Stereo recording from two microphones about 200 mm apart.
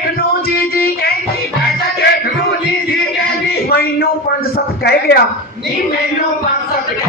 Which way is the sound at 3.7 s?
50° left (ahead or behind).